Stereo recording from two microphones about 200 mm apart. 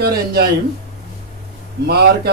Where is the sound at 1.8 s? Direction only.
55° right (ahead or behind).